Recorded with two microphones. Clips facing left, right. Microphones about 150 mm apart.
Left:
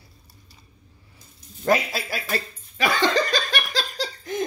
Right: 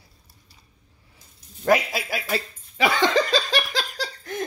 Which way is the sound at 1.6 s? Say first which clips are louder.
Right 1 dB; 15° right (ahead or behind).